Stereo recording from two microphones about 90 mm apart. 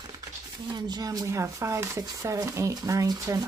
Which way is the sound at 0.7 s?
50° right (ahead or behind).